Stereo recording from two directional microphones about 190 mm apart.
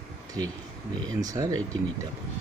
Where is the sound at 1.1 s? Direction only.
20° right (ahead or behind).